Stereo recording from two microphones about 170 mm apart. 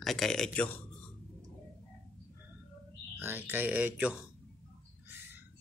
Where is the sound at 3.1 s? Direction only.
10° right (ahead or behind).